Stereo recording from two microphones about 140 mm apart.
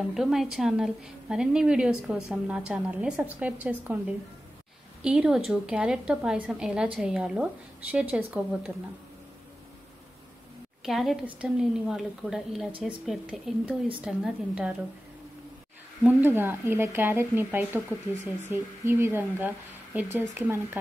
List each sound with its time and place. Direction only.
0.1 s a woman's voice: centre (ahead or behind)
5.0 s a woman's voice: 5° right (ahead or behind)
10.8 s a woman's voice: centre (ahead or behind)
16.0 s speech: 15° right (ahead or behind)